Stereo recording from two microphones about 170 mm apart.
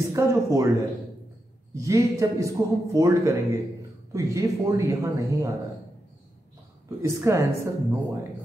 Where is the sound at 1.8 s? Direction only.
20° right (ahead or behind).